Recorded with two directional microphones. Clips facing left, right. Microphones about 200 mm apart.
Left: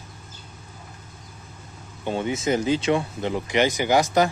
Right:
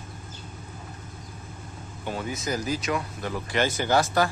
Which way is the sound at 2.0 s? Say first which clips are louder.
Left 6 dB; 25° left (ahead or behind).